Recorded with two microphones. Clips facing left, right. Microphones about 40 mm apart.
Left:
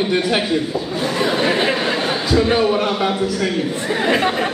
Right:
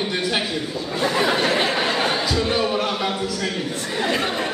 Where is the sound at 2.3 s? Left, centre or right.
Centre.